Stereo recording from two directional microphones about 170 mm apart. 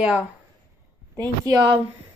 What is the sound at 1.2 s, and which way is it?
Speech, 25° right (ahead or behind).